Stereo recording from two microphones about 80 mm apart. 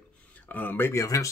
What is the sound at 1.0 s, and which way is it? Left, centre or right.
Speech, left.